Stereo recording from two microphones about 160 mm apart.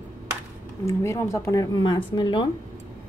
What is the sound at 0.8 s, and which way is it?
Speech, 15° left (ahead or behind).